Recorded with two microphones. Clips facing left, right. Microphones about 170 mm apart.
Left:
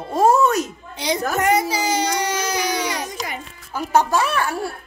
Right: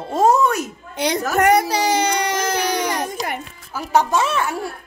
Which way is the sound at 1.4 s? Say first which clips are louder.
Right 5 dB; 65° right (ahead or behind).